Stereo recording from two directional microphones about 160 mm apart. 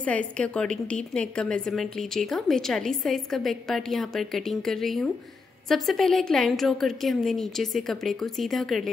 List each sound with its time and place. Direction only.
0.0 s a woman's voice: 10° left (ahead or behind)